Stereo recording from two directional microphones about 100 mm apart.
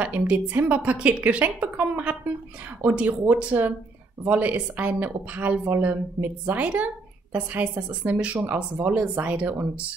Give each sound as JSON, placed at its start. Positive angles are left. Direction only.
{"t": 0.0, "sound": "a woman's voice", "side_deg": -15}